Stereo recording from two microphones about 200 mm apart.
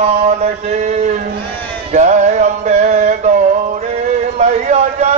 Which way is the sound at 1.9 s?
40° right (ahead or behind).